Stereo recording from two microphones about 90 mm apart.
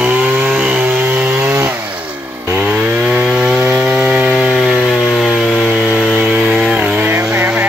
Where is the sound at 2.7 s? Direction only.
10° right (ahead or behind).